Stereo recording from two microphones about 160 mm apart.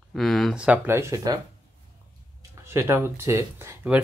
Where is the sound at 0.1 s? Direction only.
Centre (ahead or behind); by 1.4 s 20° right (ahead or behind).